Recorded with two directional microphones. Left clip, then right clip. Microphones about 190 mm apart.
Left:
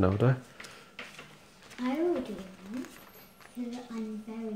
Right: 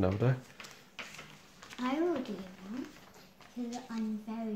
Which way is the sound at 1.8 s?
55° right (ahead or behind).